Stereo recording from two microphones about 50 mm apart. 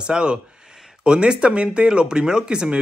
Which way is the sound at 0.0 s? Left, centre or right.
Centre.